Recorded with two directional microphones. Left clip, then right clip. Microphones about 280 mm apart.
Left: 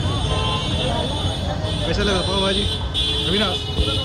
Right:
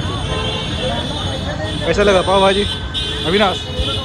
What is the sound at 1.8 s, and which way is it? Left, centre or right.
Speech, centre.